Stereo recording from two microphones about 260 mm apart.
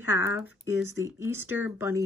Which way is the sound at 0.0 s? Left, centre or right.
Centre.